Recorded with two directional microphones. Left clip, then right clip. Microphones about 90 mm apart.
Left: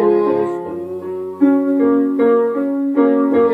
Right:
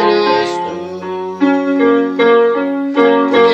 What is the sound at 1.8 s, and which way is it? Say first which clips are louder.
Music: right 3 dB; 20° left (ahead or behind).